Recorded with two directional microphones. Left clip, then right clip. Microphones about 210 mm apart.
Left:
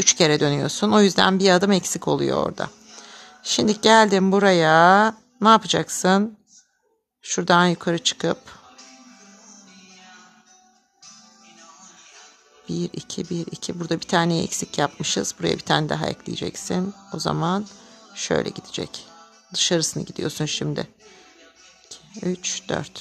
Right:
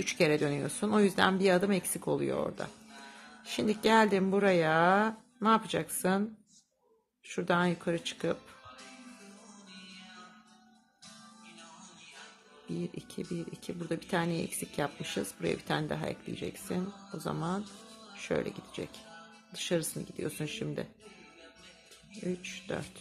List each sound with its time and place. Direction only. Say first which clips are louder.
0.0 s speech: left 11 dB; 40° left (ahead or behind)
7.2 s speech: left 12 dB; 40° left (ahead or behind)
12.7 s speech: left 11 dB; 40° left (ahead or behind)
22.2 s speech: left 11 dB; 40° left (ahead or behind)